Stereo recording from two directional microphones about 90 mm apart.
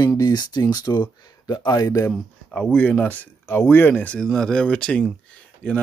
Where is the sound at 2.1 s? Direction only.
5° left (ahead or behind).